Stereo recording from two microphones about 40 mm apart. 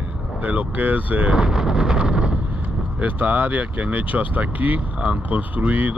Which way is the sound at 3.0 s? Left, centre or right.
Right.